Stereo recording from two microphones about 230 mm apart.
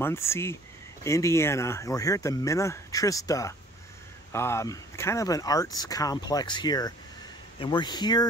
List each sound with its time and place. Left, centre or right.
0.0 s speech: centre